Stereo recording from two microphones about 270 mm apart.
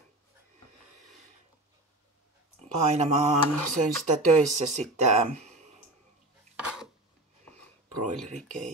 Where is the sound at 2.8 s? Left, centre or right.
Right.